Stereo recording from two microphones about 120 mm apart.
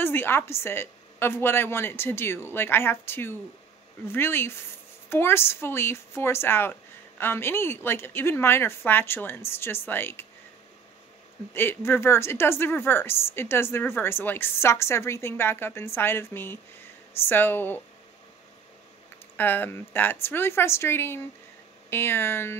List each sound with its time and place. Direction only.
0.0 s a woman's voice: 20° left (ahead or behind)
11.5 s a woman's voice: 20° left (ahead or behind)
19.3 s a woman's voice: 15° left (ahead or behind)